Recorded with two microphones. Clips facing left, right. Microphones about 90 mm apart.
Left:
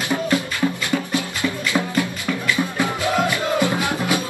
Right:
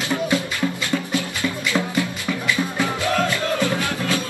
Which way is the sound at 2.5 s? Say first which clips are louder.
Left 1 dB; 15° left (ahead or behind).